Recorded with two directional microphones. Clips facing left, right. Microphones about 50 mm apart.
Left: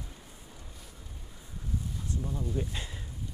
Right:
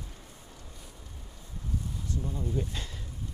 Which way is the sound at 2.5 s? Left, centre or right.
Centre.